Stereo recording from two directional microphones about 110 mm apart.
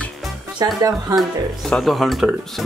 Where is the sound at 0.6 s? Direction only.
30° right (ahead or behind).